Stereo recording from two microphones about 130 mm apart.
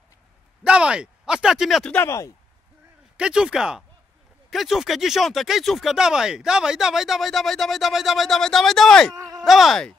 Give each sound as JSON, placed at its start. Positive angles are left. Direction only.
{"t": 0.7, "sound": "speech", "side_deg": -10}
{"t": 1.9, "sound": "speech", "side_deg": 20}
{"t": 3.2, "sound": "speech", "side_deg": -5}
{"t": 9.1, "sound": "a sound", "side_deg": -25}
{"t": 9.4, "sound": "speech", "side_deg": 0}